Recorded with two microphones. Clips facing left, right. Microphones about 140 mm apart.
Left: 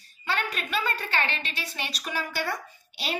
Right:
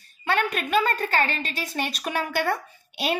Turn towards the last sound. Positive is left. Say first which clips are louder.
# right 7 dB
turn(degrees=-55)  # may be behind; listen again after turning